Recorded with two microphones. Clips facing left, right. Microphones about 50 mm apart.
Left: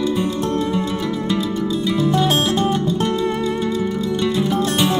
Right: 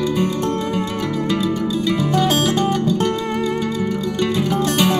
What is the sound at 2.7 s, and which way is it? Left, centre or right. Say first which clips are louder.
Music: right 1 dB; right.